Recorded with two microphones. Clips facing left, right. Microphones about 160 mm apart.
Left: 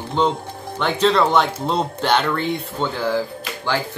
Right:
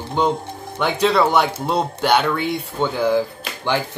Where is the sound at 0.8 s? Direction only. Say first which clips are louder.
Even; 10° right (ahead or behind).